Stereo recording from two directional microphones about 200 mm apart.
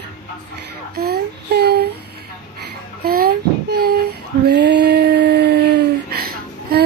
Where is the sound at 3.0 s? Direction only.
50° right (ahead or behind).